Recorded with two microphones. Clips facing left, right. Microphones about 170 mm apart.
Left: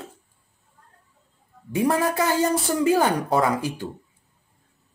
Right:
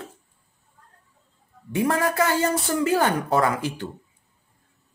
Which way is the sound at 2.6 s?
Centre (ahead or behind).